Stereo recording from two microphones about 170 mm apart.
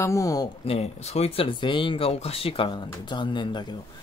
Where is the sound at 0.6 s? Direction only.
35° left (ahead or behind).